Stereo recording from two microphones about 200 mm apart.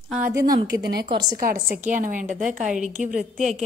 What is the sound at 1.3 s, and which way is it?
A woman's voice, 45° right (ahead or behind).